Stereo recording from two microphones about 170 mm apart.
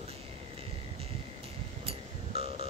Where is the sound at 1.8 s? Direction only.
35° right (ahead or behind).